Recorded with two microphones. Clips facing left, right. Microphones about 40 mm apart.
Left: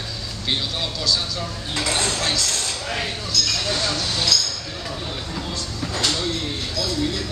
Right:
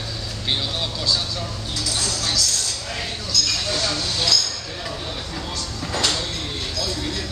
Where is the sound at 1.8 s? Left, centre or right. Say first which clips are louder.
Left 4 dB; left.